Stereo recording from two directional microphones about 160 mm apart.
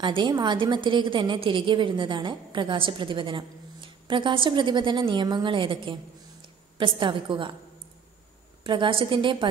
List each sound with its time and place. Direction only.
0.0 s a woman's voice: 30° right (ahead or behind)
8.6 s a woman's voice: 30° right (ahead or behind)